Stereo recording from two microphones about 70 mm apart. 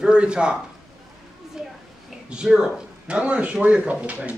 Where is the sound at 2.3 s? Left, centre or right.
Centre.